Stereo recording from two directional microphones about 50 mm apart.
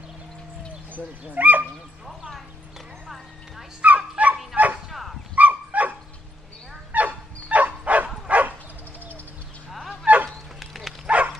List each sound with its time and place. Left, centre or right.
1.2 s speech: right
3.8 s dog: right
4.5 s bow-wow: right
5.3 s dog: right
10.0 s bow-wow: right
10.6 s dog: centre
11.1 s dog: right